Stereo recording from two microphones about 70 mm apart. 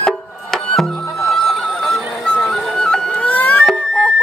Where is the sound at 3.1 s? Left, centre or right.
Left.